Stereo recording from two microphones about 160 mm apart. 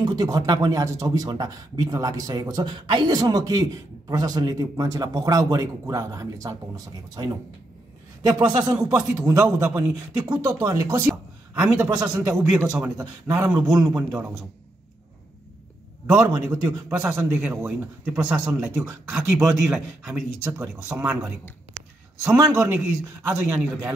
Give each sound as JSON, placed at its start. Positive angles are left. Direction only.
{"t": 0.0, "sound": "a man's voice", "side_deg": -25}
{"t": 11.9, "sound": "speech", "side_deg": -20}
{"t": 16.1, "sound": "speech", "side_deg": -5}
{"t": 16.6, "sound": "speech", "side_deg": -20}
{"t": 22.2, "sound": "speech", "side_deg": -20}
{"t": 22.5, "sound": "speech", "side_deg": -10}